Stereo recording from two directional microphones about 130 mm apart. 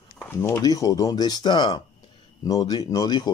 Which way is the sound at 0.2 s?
20° left (ahead or behind).